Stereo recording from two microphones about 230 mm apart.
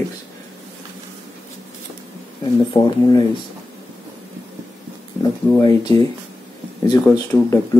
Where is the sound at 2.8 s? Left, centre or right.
Centre.